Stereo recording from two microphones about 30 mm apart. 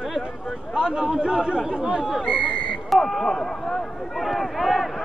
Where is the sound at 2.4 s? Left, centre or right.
Left.